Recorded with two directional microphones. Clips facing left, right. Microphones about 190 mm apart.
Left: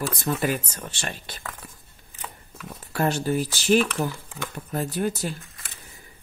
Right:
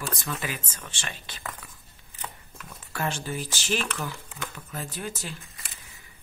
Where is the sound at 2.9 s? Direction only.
40° left (ahead or behind).